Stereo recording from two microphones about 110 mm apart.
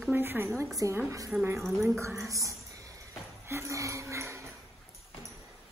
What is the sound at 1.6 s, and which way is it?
Speech, centre (ahead or behind).